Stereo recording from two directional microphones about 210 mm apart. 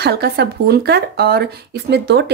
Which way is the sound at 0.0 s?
50° right (ahead or behind).